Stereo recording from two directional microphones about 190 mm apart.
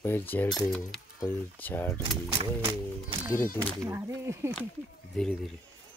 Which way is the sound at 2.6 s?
25° right (ahead or behind).